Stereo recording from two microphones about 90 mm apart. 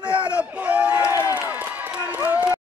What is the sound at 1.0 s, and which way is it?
Run, 35° left (ahead or behind).